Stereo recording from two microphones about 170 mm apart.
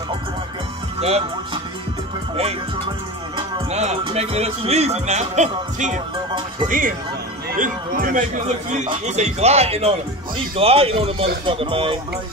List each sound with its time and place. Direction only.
0.9 s speech: 35° right (ahead or behind)
3.3 s music: 35° right (ahead or behind)
6.7 s a man's voice: 55° right (ahead or behind)
9.0 s music: 40° right (ahead or behind)